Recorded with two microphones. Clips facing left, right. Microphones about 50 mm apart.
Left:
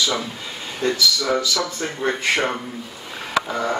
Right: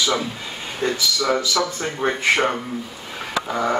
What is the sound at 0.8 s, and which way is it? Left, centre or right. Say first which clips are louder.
A man's voice: left 1 dB; right.